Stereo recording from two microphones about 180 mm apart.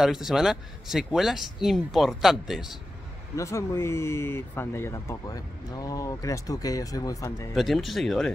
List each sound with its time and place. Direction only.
0.0 s speech: centre (ahead or behind)
3.3 s speech: 15° left (ahead or behind)
7.5 s speech: centre (ahead or behind)